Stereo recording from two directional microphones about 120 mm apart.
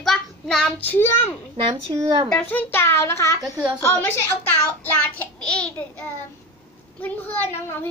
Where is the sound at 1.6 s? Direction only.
40° right (ahead or behind).